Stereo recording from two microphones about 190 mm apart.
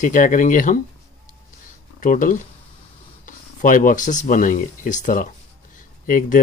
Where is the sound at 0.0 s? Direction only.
40° left (ahead or behind).